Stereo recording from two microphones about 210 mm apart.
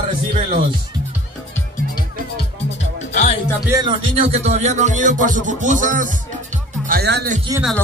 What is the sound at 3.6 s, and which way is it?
Music, 20° right (ahead or behind).